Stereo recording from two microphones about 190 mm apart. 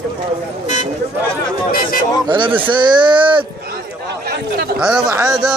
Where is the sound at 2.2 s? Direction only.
25° right (ahead or behind).